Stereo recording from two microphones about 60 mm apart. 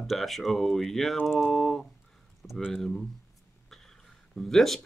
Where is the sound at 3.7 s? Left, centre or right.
Centre.